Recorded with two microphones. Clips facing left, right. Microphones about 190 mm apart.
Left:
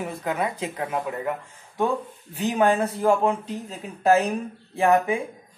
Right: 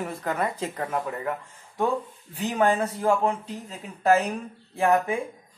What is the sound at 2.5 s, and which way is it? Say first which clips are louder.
Speech: left 2 dB; 15° left (ahead or behind).